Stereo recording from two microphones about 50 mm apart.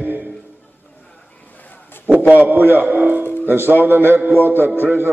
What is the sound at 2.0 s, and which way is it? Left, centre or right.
A man's voice, right.